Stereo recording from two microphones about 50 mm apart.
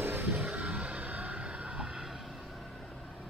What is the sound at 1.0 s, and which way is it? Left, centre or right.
Vehicle, right.